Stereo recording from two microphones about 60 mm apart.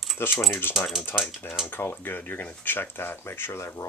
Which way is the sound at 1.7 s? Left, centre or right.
Left.